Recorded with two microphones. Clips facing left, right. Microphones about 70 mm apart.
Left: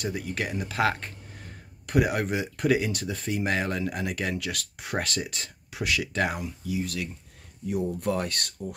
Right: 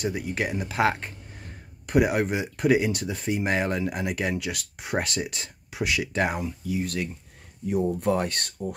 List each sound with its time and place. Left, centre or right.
0.0 s speech: centre
6.7 s speech: right
7.7 s speech: right